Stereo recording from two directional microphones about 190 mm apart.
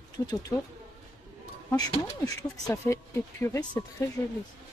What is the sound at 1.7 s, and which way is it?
Speech, 20° left (ahead or behind).